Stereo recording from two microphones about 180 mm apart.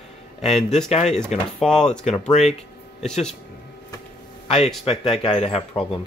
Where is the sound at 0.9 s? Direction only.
35° left (ahead or behind).